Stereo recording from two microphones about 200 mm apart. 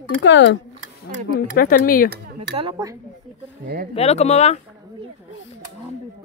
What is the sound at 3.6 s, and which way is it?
Speech, 50° right (ahead or behind).